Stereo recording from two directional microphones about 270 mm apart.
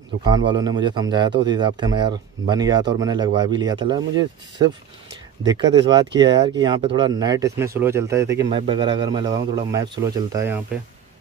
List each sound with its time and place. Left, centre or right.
0.2 s speech: centre